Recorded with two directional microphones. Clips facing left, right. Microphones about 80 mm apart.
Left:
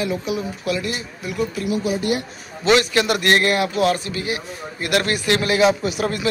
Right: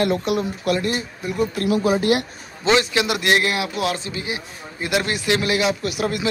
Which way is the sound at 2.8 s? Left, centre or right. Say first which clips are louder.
Left 2 dB; centre.